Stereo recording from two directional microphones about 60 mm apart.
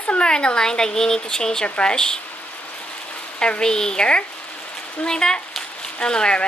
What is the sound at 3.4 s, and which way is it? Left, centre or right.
Speech, centre.